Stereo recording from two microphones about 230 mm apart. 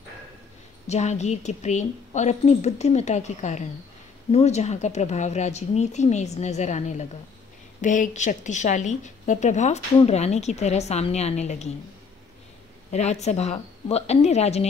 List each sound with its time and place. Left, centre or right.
0.8 s a woman's voice: left
12.9 s a woman's voice: left